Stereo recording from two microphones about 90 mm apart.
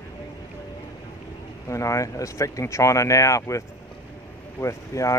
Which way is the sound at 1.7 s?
35° left (ahead or behind).